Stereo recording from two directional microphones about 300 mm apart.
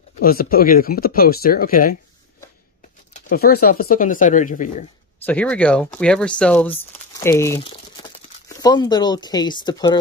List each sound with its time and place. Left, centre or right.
0.2 s speech: left
3.3 s speech: left
5.2 s speech: centre